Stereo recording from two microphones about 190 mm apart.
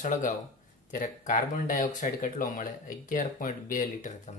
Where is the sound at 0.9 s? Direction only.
45° left (ahead or behind).